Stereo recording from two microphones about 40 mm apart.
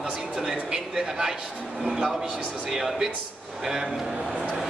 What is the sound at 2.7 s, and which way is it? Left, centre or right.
A man's voice, centre.